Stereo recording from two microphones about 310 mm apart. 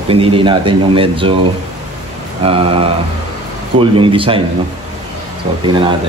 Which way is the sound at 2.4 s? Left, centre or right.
Centre.